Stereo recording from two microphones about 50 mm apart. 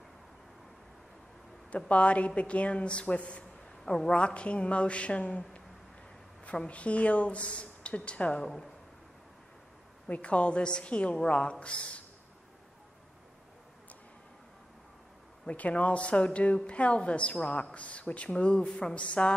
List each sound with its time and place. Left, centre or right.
1.9 s speech: left
6.4 s speech: left
10.0 s speech: left
15.4 s speech: left